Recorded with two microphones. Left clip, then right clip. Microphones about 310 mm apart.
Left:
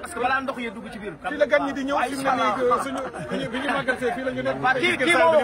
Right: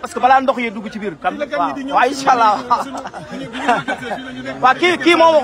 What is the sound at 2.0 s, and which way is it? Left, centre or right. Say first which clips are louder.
Speech: right 11 dB; centre.